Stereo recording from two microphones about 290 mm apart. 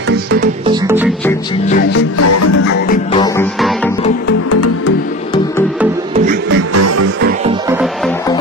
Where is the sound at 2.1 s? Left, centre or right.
Left.